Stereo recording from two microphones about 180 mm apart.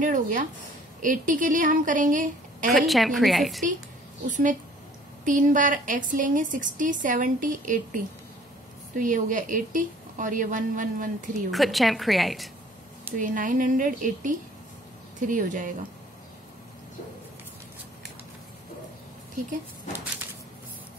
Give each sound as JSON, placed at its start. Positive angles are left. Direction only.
{"t": 0.0, "sound": "a woman's voice", "side_deg": -45}
{"t": 2.7, "sound": "a woman's voice", "side_deg": 0}
{"t": 4.3, "sound": "a woman's voice", "side_deg": -45}
{"t": 11.5, "sound": "a woman's voice", "side_deg": 0}
{"t": 13.2, "sound": "a woman's voice", "side_deg": -50}